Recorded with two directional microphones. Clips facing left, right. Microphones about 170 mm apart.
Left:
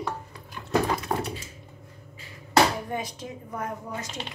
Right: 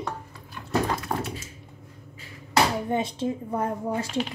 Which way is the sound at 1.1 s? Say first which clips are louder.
Left 1 dB; 10° left (ahead or behind).